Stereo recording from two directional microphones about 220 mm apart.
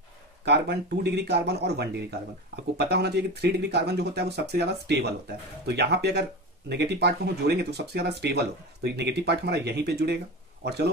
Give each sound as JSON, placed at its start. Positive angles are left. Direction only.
{"t": 0.5, "sound": "speech", "side_deg": -50}